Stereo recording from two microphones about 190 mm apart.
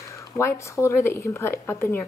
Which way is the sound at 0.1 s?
15° left (ahead or behind).